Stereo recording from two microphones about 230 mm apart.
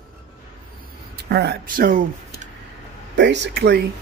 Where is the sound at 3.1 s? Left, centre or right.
Right.